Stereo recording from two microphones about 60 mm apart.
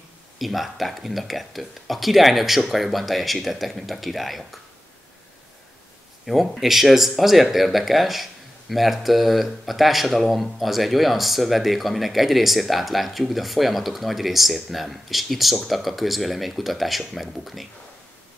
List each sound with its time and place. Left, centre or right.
0.4 s speech: centre
6.2 s speech: centre